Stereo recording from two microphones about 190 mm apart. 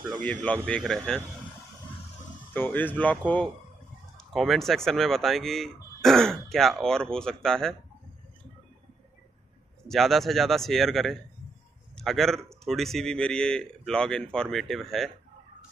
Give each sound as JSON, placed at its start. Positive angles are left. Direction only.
{"t": 0.2, "sound": "speech", "side_deg": 10}
{"t": 2.5, "sound": "speech", "side_deg": 10}
{"t": 9.8, "sound": "a man's voice", "side_deg": 0}